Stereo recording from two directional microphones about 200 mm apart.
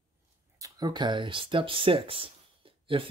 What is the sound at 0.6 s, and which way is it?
Speech, 20° right (ahead or behind).